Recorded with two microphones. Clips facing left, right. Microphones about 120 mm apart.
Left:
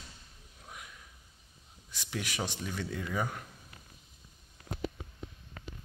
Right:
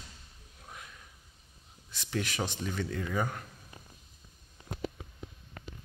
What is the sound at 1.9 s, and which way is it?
Speech, 10° left (ahead or behind).